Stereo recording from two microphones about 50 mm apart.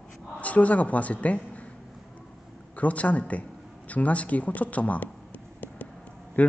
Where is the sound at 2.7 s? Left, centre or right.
Left.